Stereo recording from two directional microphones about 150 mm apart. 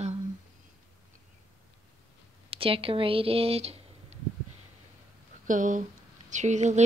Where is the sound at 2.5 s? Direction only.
35° right (ahead or behind).